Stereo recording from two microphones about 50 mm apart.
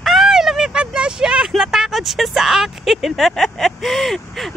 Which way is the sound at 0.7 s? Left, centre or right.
Centre.